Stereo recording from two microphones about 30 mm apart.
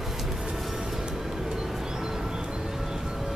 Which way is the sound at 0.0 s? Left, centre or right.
Centre.